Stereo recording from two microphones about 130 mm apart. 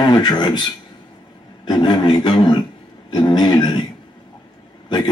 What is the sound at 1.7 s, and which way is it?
Speech, 35° left (ahead or behind).